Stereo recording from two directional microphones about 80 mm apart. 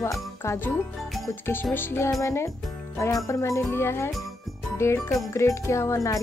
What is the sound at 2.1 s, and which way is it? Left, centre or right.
Speech, left.